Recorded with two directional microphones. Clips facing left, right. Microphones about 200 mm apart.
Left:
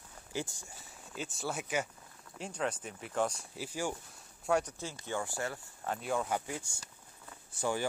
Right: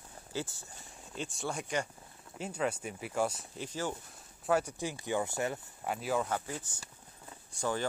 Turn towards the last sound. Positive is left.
turn(degrees=10)  # may be behind; listen again after turning